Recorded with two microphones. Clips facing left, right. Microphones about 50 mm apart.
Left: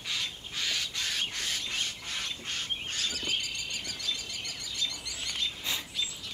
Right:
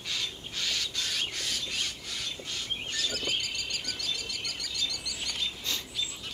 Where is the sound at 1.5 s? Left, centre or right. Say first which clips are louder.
Even; left.